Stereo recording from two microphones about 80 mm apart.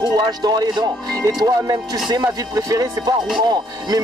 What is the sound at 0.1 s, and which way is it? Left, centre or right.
Speech, right.